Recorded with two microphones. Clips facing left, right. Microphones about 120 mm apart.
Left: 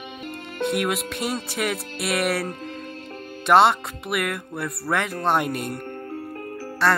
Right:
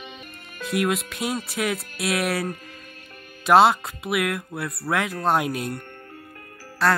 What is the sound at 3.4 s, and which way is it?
Speech, centre (ahead or behind).